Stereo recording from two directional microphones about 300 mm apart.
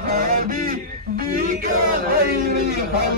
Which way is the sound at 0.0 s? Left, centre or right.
Right.